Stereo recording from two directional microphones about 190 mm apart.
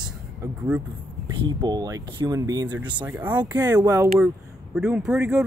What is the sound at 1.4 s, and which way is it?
Speech, 20° right (ahead or behind).